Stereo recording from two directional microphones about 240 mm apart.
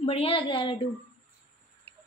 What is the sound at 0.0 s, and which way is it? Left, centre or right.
Speech, left.